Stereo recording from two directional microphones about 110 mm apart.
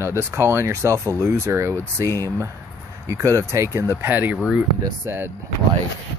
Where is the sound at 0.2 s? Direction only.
20° right (ahead or behind).